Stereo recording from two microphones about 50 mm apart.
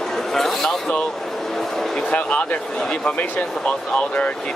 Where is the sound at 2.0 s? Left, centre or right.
Left.